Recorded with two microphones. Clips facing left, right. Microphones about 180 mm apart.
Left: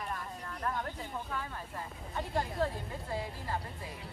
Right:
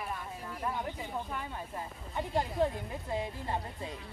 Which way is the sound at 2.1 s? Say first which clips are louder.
Right 3 dB; 20° right (ahead or behind).